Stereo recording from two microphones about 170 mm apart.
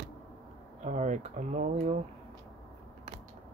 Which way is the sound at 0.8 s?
45° right (ahead or behind).